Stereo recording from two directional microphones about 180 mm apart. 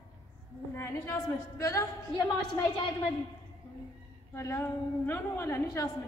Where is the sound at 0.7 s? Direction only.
15° left (ahead or behind).